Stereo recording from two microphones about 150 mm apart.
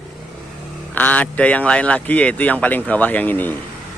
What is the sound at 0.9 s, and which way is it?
Speech, 10° left (ahead or behind).